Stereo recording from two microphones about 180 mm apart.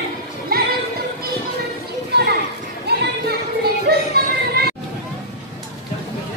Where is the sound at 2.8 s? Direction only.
60° right (ahead or behind).